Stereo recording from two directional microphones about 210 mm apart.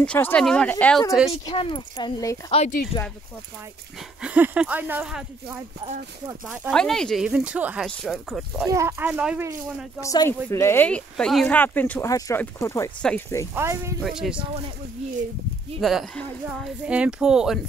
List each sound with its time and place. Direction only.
0.0 s speech: 5° left (ahead or behind)
1.3 s speech: 25° left (ahead or behind)
4.2 s speech: 5° right (ahead or behind)
6.2 s speech: 10° right (ahead or behind)
6.7 s speech: 5° left (ahead or behind)
8.6 s speech: 10° right (ahead or behind)
10.0 s speech: 15° left (ahead or behind)
13.6 s speech: 10° right (ahead or behind)
14.0 s speech: centre (ahead or behind)
15.8 s speech: centre (ahead or behind)